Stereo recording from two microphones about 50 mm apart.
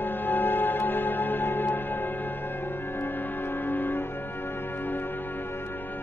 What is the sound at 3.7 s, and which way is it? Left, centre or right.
Music, left.